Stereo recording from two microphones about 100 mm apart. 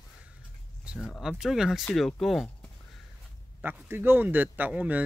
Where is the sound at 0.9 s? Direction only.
10° right (ahead or behind).